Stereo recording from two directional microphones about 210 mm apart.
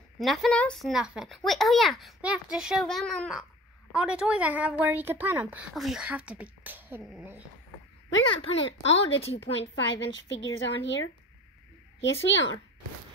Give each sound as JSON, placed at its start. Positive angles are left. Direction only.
{"t": 0.2, "sound": "a woman's voice", "side_deg": 0}
{"t": 8.5, "sound": "a woman's voice", "side_deg": 60}